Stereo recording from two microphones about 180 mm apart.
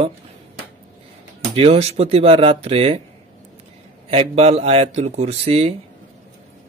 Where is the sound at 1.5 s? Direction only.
35° right (ahead or behind).